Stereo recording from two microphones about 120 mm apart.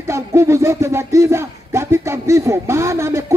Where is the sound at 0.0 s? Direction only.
20° right (ahead or behind).